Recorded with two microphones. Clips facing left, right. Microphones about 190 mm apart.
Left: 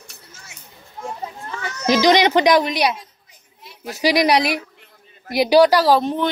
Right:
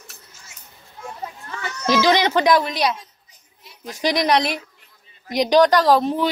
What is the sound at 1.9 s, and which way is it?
Speech, 15° left (ahead or behind).